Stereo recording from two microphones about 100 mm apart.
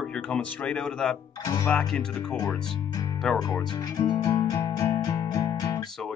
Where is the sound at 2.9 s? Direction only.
40° left (ahead or behind).